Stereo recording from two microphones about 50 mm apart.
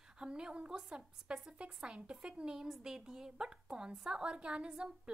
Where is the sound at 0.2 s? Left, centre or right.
Centre.